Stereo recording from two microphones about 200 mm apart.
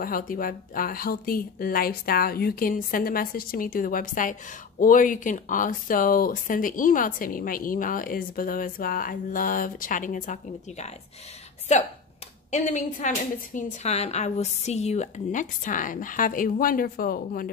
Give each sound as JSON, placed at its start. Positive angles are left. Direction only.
{"t": 0.0, "sound": "a woman's voice", "side_deg": 45}